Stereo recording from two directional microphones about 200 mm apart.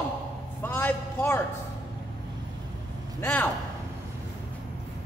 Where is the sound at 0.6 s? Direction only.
10° left (ahead or behind).